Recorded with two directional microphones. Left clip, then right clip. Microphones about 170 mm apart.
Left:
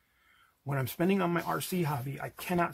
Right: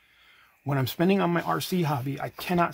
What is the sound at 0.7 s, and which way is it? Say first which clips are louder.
Speech: right 6 dB; 35° right (ahead or behind).